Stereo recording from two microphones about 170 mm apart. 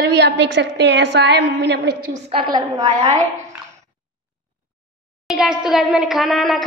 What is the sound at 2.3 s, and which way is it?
A woman's voice, 30° right (ahead or behind).